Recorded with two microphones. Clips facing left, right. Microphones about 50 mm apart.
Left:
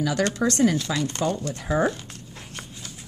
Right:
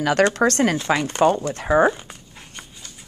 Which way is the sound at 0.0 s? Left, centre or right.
Right.